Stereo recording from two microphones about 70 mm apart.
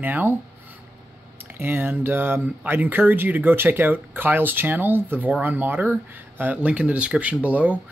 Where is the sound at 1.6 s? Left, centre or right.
Right.